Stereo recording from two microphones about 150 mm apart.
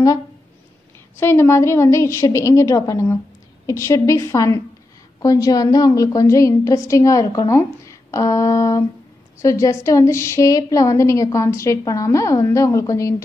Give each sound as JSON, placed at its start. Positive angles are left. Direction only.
{"t": 1.2, "sound": "a woman's voice", "side_deg": 15}